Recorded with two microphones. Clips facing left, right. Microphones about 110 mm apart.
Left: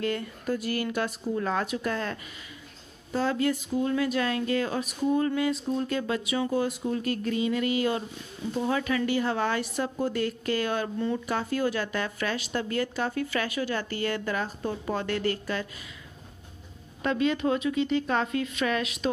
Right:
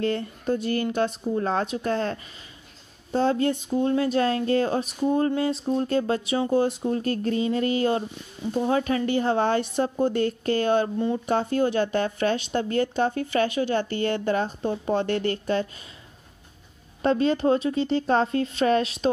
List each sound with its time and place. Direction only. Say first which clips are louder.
0.0 s a woman's voice: right 4 dB; 30° right (ahead or behind)
17.0 s speech: right 4 dB; 35° right (ahead or behind)